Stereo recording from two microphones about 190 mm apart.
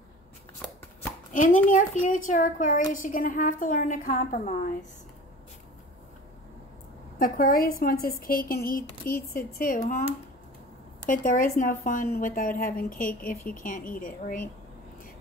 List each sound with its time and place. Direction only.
1.3 s a child's voice: 45° left (ahead or behind)
7.2 s a woman's voice: 50° left (ahead or behind)
11.1 s a woman's voice: 45° left (ahead or behind)